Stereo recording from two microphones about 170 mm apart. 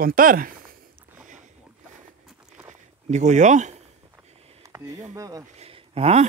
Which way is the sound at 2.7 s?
45° right (ahead or behind).